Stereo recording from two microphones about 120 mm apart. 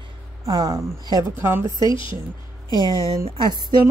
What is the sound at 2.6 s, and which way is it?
Speech, 35° right (ahead or behind).